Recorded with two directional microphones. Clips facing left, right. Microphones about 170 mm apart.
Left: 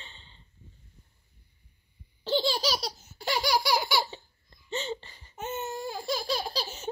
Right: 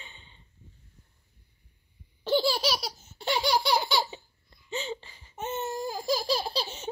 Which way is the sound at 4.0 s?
10° right (ahead or behind).